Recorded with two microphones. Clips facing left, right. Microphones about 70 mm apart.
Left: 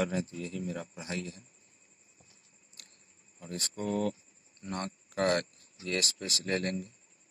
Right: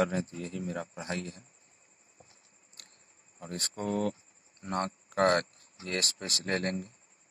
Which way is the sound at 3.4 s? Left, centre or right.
Right.